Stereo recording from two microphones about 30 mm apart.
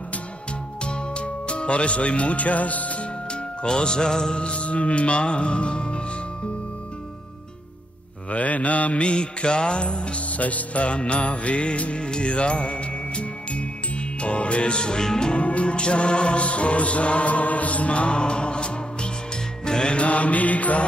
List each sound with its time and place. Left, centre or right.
0.8 s music: left
3.6 s music: left
4.4 s mantra: left
5.2 s music: left
8.3 s mantra: left
9.0 s music: left
10.3 s mantra: left
11.0 s music: left
15.3 s music: left
19.9 s mantra: left